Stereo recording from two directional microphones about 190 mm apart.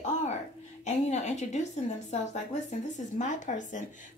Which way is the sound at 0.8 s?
35° left (ahead or behind).